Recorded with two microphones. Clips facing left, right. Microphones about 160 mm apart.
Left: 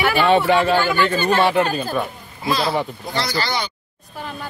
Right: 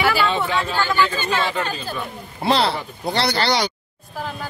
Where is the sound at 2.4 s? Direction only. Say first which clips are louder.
Right 1 dB; 65° right (ahead or behind).